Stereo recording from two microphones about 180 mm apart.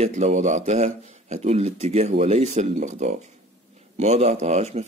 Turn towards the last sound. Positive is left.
turn(degrees=-35)  # may be behind; listen again after turning